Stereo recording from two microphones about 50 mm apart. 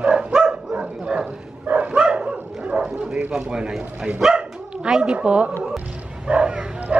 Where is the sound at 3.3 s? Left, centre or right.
Centre.